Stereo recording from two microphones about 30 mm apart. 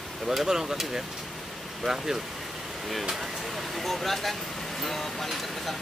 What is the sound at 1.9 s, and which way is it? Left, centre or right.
Speech, centre.